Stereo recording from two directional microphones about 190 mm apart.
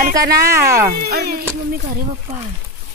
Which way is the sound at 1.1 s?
55° right (ahead or behind).